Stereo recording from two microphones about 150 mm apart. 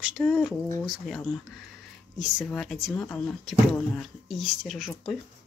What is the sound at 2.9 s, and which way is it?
Speech, 20° left (ahead or behind).